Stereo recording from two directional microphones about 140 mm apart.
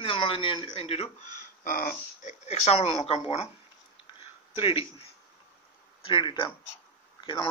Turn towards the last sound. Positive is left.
turn(degrees=35)  # may be behind; listen again after turning